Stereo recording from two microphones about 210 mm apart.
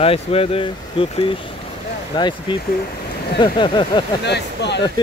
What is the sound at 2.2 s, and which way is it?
Speech, 20° left (ahead or behind).